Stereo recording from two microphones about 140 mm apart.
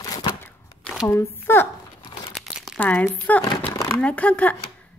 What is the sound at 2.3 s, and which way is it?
Crumpling, centre (ahead or behind).